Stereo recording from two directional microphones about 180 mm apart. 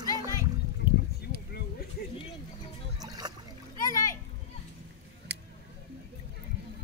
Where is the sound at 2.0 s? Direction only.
60° left (ahead or behind).